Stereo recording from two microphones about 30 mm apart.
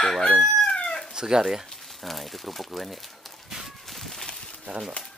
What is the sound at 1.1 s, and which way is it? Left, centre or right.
Chicken, right.